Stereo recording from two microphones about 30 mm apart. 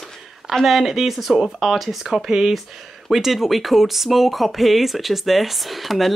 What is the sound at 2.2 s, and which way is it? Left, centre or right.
Speech, centre.